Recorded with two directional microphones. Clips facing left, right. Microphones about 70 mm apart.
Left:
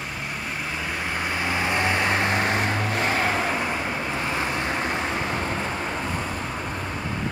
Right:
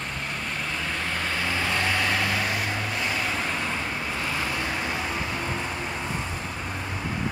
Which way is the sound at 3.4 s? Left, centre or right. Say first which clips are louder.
Left 3 dB; left.